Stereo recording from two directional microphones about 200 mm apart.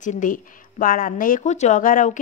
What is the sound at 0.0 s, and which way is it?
A woman's voice, 40° left (ahead or behind).